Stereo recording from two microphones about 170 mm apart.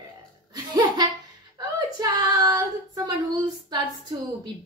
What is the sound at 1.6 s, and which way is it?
Child singing, 20° right (ahead or behind).